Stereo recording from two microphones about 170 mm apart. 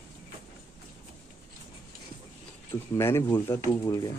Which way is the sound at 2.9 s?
15° left (ahead or behind).